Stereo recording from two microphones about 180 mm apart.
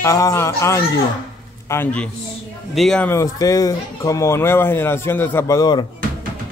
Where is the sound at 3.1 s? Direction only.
20° left (ahead or behind).